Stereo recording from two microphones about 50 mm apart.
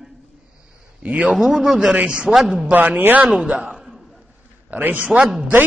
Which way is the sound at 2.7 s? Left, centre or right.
Right.